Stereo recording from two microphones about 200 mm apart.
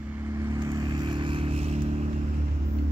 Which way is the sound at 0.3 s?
20° right (ahead or behind).